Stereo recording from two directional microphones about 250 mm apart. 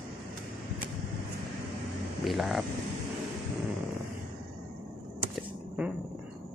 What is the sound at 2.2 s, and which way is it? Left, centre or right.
Speech, centre.